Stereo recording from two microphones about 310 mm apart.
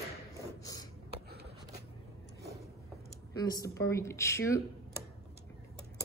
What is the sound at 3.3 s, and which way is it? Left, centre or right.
A woman's voice, centre.